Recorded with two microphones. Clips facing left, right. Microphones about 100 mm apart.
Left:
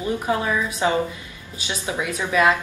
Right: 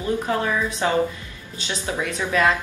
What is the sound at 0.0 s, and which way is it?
A woman's voice, 15° left (ahead or behind).